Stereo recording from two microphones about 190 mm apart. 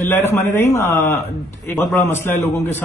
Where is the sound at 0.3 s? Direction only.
10° left (ahead or behind).